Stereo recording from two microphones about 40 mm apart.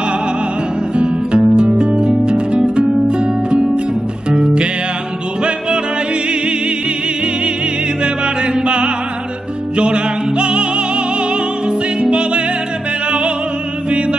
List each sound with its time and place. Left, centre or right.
0.9 s guitar: right
1.9 s music: right
8.0 s music: right
13.8 s music: right